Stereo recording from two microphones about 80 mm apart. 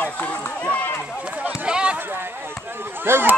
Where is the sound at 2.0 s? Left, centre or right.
Right.